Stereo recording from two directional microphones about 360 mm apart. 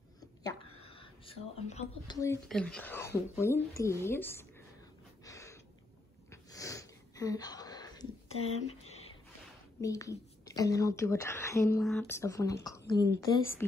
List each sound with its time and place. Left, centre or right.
0.2 s speech: centre
5.2 s a sound: centre
9.8 s a woman's voice: centre